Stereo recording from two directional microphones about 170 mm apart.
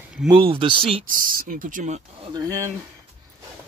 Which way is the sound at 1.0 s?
55° right (ahead or behind).